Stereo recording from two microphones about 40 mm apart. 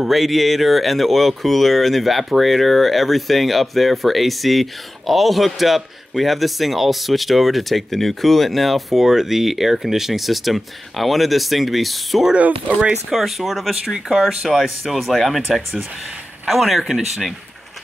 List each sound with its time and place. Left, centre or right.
0.1 s speech: centre
9.0 s speech: centre
12.4 s speech: right
13.1 s speech: centre
16.4 s speech: centre